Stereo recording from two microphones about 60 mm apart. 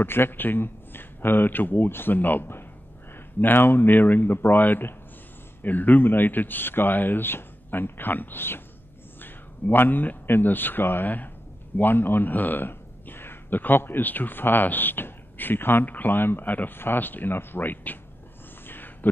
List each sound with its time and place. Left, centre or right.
0.0 s speech: left